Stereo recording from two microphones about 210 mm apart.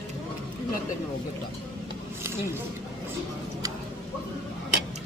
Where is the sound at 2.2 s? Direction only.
10° right (ahead or behind).